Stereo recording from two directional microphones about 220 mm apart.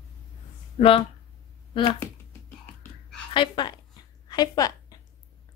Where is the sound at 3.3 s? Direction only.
20° left (ahead or behind).